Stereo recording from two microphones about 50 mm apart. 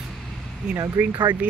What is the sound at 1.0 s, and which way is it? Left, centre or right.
Speech, right.